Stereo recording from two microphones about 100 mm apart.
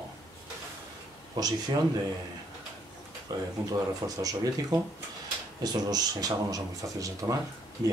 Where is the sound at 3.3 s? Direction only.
40° right (ahead or behind).